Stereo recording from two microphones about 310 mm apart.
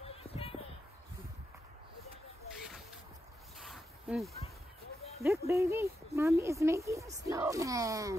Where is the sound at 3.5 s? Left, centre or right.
Centre.